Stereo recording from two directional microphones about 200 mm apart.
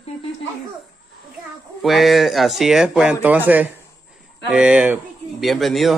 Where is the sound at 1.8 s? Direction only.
Centre (ahead or behind).